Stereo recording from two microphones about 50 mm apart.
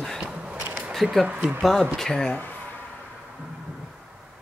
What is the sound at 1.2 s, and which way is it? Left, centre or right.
Speech, right.